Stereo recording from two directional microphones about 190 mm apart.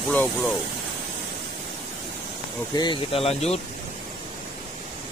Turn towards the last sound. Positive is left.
turn(degrees=35)  # may be behind; listen again after turning